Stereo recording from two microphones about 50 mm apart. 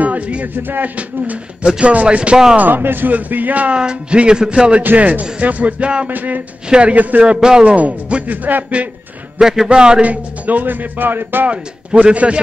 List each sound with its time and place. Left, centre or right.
0.0 s a man's voice: right
0.6 s speech: right
0.9 s speech: right
2.5 s speech: right
3.7 s speech: centre
6.0 s speech: right
7.2 s a man's voice: centre
7.6 s speech: right
9.4 s a man's voice: centre
10.0 s speech: right
11.4 s speech: right